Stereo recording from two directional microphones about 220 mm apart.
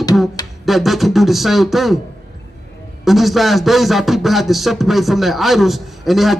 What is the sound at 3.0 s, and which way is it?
A man's voice, centre (ahead or behind).